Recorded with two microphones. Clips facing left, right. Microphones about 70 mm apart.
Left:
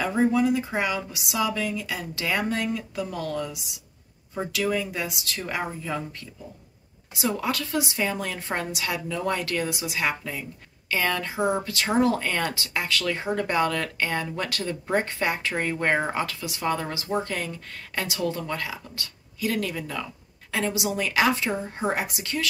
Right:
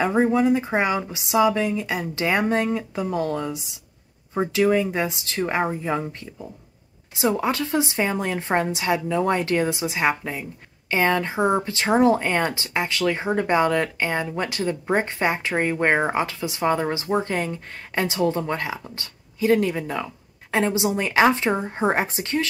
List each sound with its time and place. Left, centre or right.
0.0 s speech: right
7.2 s a woman's voice: right